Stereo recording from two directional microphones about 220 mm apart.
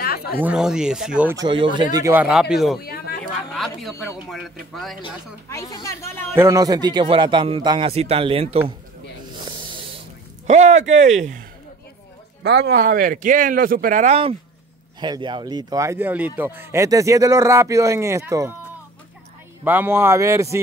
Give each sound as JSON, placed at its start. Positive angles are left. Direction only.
{"t": 0.0, "sound": "a sound", "side_deg": 45}
{"t": 0.4, "sound": "speech", "side_deg": -5}
{"t": 1.3, "sound": "a man's voice", "side_deg": -20}
{"t": 2.0, "sound": "speech", "side_deg": -10}
{"t": 3.5, "sound": "a sound", "side_deg": 0}
{"t": 4.3, "sound": "speech", "side_deg": 0}
{"t": 5.0, "sound": "speech", "side_deg": 15}
{"t": 6.3, "sound": "a man's voice", "side_deg": -15}
{"t": 10.4, "sound": "speech", "side_deg": -30}
{"t": 12.4, "sound": "speech", "side_deg": -40}
{"t": 19.6, "sound": "speech", "side_deg": -10}